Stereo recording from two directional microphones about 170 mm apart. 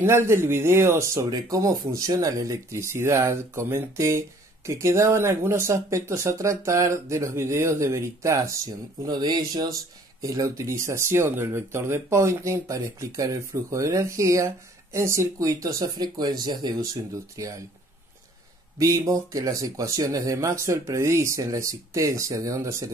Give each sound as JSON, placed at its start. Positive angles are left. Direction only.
{"t": 0.0, "sound": "speech", "side_deg": -15}
{"t": 18.8, "sound": "speech", "side_deg": -20}